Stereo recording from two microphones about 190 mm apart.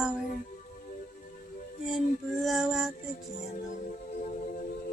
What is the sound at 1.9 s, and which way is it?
Speech, centre (ahead or behind).